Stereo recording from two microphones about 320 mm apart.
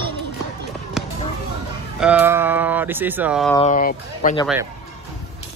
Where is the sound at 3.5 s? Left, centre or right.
Left.